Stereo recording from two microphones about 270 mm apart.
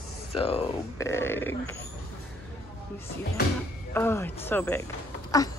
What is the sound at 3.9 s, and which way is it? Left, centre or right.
Speech, centre.